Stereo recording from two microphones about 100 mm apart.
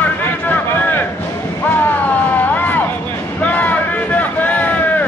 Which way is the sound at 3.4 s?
15° left (ahead or behind).